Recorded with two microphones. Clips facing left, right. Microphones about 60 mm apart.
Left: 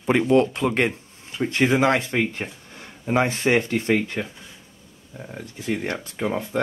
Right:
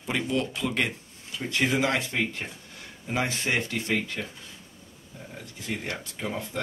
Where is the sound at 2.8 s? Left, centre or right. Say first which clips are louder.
Left 8 dB; left.